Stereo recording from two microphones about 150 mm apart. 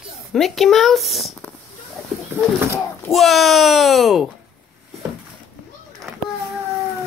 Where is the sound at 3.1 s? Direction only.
Centre (ahead or behind).